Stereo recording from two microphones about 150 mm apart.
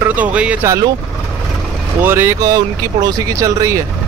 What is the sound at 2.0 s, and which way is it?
Speech, 15° right (ahead or behind).